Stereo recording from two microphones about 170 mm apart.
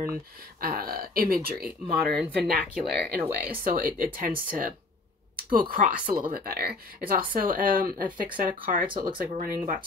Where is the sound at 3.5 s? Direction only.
55° right (ahead or behind).